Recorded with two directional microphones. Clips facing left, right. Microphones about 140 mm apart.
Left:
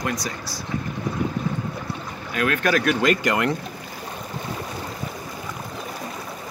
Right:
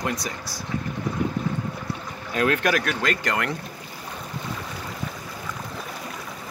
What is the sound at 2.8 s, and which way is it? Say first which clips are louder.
Speech: left 6 dB; 15° left (ahead or behind).